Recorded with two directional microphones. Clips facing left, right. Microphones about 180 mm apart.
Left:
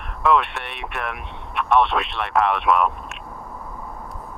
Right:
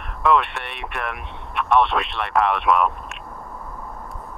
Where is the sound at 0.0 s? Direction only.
Centre (ahead or behind).